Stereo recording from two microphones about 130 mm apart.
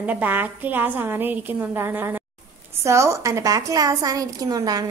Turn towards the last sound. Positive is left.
turn(degrees=-25)  # may be behind; listen again after turning